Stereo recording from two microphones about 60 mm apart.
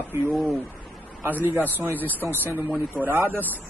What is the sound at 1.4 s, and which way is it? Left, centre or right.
Speech, right.